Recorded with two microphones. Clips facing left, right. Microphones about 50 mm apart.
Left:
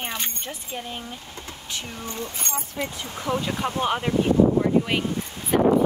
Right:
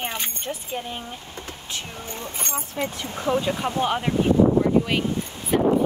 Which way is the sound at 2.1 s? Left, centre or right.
Right.